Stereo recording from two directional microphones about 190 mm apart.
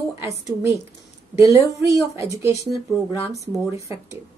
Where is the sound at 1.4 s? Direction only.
15° right (ahead or behind).